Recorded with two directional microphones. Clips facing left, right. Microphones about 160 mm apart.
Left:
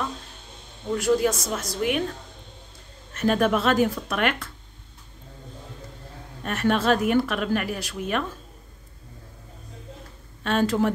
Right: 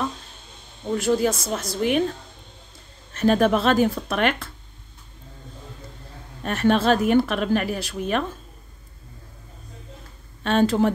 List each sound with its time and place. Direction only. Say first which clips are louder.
0.9 s a woman's voice: right 1 dB; 30° right (ahead or behind)
3.2 s speech: right 3 dB; 35° right (ahead or behind)
6.4 s speech: right 3 dB; 30° right (ahead or behind)
10.4 s a woman's voice: right 3 dB; 30° right (ahead or behind)